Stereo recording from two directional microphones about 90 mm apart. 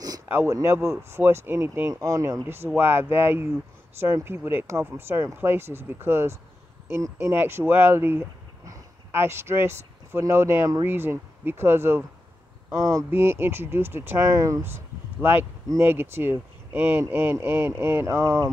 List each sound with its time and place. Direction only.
0.3 s speech: 30° right (ahead or behind)
1.9 s speech: 35° right (ahead or behind)
2.4 s speech: 25° right (ahead or behind)
13.1 s speech: 25° right (ahead or behind)
14.6 s speech: 25° right (ahead or behind)
18.0 s speech: 35° right (ahead or behind)